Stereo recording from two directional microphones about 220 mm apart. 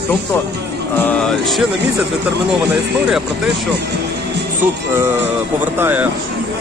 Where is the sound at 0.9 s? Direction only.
5° left (ahead or behind).